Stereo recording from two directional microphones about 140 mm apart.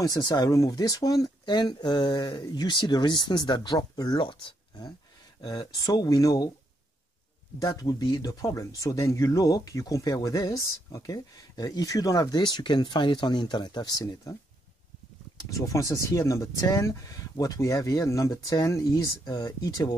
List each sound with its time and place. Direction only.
0.0 s speech: 30° left (ahead or behind)
7.5 s speech: 25° left (ahead or behind)
15.5 s speech: 25° left (ahead or behind)